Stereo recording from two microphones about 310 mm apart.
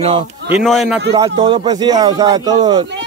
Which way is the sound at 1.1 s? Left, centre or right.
Centre.